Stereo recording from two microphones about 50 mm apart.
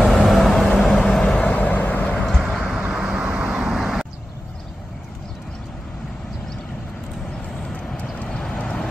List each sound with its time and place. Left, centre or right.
0.0 s vehicle: centre
1.2 s vehicle: left
2.5 s vehicle: centre
3.2 s vehicle: right
3.4 s vehicle: centre
8.3 s vehicle: centre